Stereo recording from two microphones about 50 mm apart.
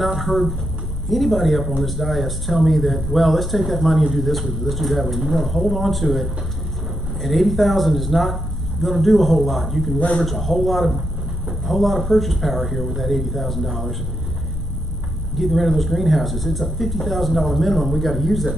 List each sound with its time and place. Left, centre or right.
0.0 s speech: centre
9.9 s speech: left
10.2 s speech: centre
15.3 s speech: centre